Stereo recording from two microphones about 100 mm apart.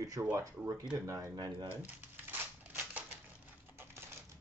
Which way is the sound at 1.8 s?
20° right (ahead or behind).